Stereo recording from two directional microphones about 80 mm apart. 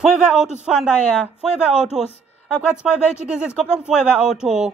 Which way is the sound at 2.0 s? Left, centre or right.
Centre.